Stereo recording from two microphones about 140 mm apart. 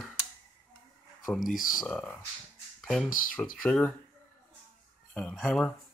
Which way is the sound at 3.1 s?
75° left (ahead or behind).